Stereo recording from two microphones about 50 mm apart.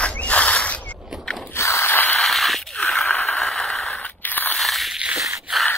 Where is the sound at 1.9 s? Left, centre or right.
Left.